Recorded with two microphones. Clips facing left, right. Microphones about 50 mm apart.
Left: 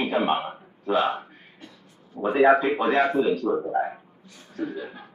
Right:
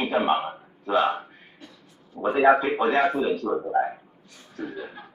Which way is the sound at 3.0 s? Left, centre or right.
Right.